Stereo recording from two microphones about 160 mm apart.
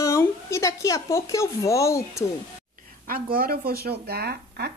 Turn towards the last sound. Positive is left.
turn(degrees=-75)  # may be behind; listen again after turning